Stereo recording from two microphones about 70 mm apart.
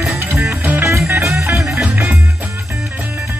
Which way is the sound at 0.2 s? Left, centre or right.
Right.